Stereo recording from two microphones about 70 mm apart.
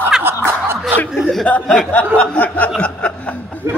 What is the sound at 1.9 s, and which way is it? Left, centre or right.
Speech, centre.